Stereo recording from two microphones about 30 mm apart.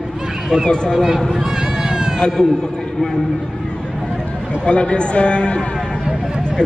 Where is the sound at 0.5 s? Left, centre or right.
Left.